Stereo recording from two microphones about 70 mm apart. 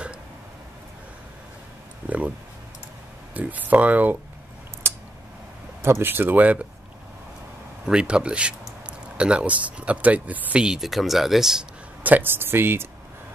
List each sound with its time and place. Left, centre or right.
2.0 s speech: centre
3.3 s speech: right
5.8 s speech: right
7.8 s speech: centre
10.6 s speech: centre
12.0 s speech: right